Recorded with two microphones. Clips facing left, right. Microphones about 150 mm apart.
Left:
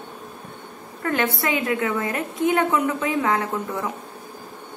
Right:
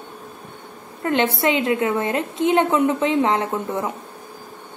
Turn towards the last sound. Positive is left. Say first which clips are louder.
# right 3 dB
turn(degrees=-20)  # may be behind; listen again after turning